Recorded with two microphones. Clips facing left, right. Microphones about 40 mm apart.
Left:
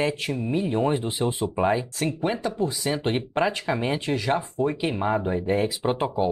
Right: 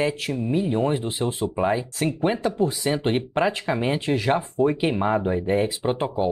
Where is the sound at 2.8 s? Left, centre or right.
Centre.